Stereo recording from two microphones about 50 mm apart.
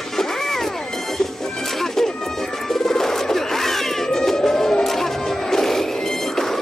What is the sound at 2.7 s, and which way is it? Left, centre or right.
Music, centre.